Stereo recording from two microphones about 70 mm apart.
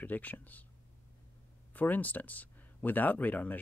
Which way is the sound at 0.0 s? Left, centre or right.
Left.